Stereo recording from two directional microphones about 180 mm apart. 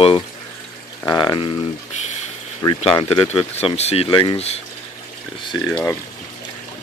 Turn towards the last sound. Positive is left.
turn(degrees=10)  # may be behind; listen again after turning